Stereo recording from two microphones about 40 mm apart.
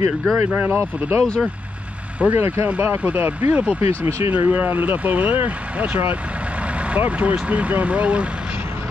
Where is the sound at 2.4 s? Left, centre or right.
Right.